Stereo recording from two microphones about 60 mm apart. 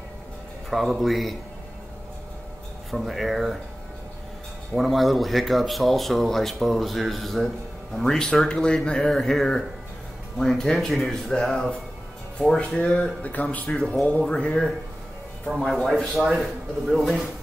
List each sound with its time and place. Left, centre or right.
0.7 s speech: centre
2.9 s speech: centre
4.7 s speech: centre
12.7 s speech: centre
13.3 s speech: left
14.2 s speech: centre
15.4 s speech: centre